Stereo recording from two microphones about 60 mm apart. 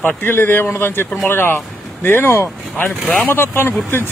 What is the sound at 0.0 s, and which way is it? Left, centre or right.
Speech, left.